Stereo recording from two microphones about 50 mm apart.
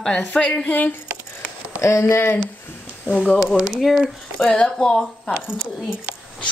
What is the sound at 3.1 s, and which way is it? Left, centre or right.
Speech, right.